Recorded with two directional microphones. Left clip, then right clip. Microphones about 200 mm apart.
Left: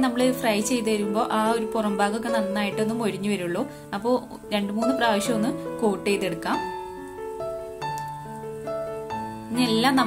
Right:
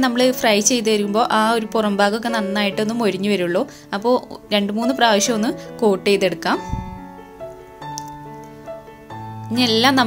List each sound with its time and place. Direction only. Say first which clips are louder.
0.0 s a woman's voice: right 6 dB; 25° right (ahead or behind)
9.6 s a woman's voice: right 6 dB; 25° right (ahead or behind)